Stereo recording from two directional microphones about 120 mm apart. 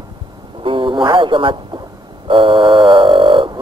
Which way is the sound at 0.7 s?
45° right (ahead or behind).